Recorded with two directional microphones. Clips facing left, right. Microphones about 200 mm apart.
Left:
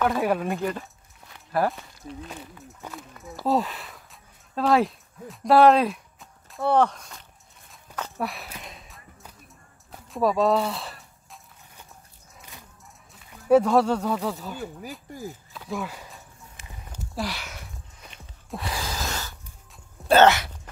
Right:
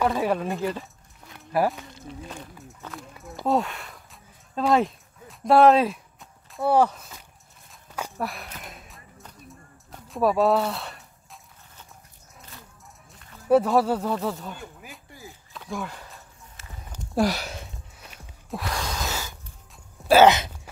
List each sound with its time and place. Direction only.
0.1 s speech: 5° left (ahead or behind)
2.9 s speech: centre (ahead or behind)
8.2 s a sound: centre (ahead or behind)
13.1 s speech: 5° left (ahead or behind)
15.0 s speech: 45° left (ahead or behind)
15.5 s walk: 5° left (ahead or behind)
17.1 s sniff: 45° right (ahead or behind)
17.9 s a sound: 5° right (ahead or behind)
20.2 s speech: 20° right (ahead or behind)